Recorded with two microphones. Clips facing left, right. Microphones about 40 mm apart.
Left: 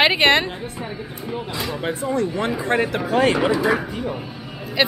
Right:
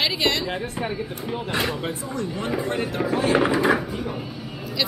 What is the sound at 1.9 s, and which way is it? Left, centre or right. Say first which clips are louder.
Speech: left 6 dB; left.